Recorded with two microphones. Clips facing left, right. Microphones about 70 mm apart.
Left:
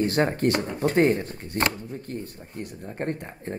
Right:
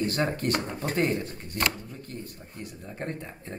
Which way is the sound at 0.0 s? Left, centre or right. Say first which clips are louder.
Left 5 dB; left.